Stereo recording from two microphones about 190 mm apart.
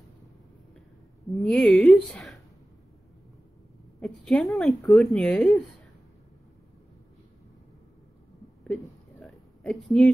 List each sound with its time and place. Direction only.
1.3 s speech: centre (ahead or behind)
4.0 s speech: 5° left (ahead or behind)
8.6 s a sound: centre (ahead or behind)